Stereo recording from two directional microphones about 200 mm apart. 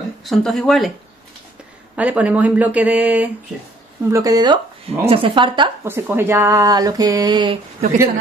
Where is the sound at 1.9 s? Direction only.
5° right (ahead or behind); by 5.7 s 25° right (ahead or behind).